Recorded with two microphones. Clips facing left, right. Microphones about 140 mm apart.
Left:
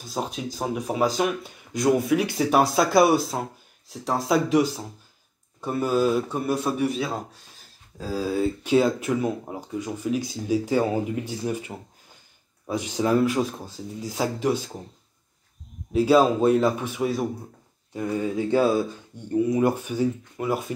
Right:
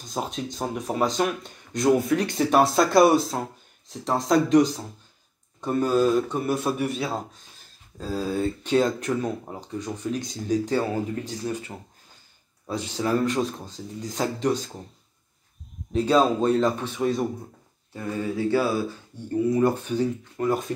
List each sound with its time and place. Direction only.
0.0 s speech: centre (ahead or behind)
15.9 s speech: 5° left (ahead or behind)
17.9 s speech: 15° left (ahead or behind)